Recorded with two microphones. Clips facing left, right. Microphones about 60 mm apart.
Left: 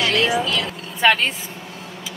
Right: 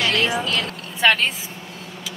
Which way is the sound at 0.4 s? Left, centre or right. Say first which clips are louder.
Left 2 dB; right.